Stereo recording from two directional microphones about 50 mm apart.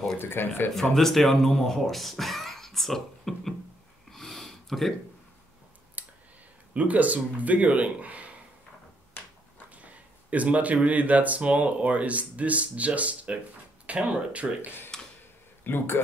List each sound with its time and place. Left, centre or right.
0.2 s speech: left
0.7 s speech: centre
4.1 s a sound: centre
6.0 s clicking: right
6.7 s speech: right
9.8 s speech: right
14.9 s a sound: centre
15.6 s speech: left